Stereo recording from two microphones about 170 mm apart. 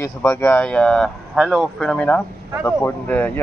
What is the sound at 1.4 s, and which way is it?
Speech, 5° right (ahead or behind).